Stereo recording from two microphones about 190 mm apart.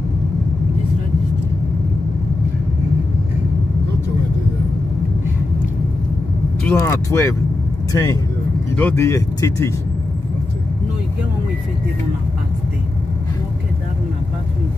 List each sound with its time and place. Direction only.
6.6 s speech: 10° left (ahead or behind)